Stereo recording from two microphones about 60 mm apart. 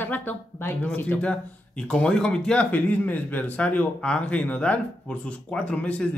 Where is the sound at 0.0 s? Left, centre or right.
Left.